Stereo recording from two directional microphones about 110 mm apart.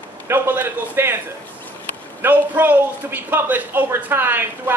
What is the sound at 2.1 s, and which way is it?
A man's voice, 20° right (ahead or behind).